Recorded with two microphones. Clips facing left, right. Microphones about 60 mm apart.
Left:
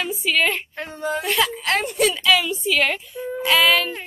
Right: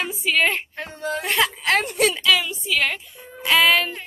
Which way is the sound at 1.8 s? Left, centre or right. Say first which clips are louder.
Left 2 dB; right.